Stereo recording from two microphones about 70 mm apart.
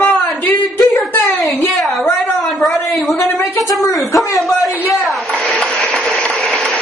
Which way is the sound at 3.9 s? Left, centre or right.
Centre.